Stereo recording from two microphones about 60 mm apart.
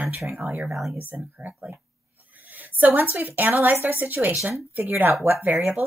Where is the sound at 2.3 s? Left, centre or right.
Right.